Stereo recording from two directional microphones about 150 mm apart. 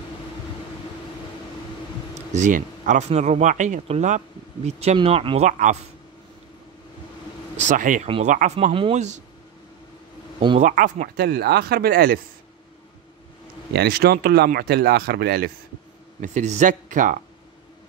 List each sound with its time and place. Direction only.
2.3 s speech: 55° right (ahead or behind); by 5.5 s 40° right (ahead or behind)
5.5 s speech: 55° right (ahead or behind)
7.5 s speech: 55° right (ahead or behind)
10.6 s speech: 60° right (ahead or behind); by 12.2 s 85° right
13.7 s speech: 90° right
16.2 s speech: 50° right (ahead or behind)